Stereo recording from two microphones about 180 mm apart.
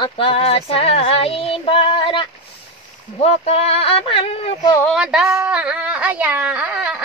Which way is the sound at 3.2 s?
35° left (ahead or behind).